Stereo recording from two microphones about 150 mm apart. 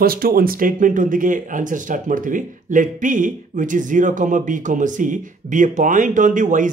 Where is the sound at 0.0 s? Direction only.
80° right.